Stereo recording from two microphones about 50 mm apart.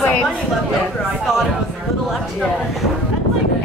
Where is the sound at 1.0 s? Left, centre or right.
Centre.